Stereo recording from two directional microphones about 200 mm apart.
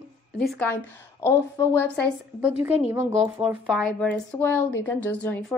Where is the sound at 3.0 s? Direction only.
35° right (ahead or behind).